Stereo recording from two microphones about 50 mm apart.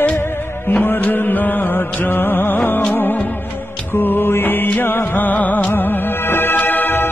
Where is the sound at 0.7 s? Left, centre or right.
Left.